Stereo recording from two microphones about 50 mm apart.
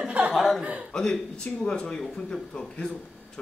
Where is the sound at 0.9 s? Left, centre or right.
Centre.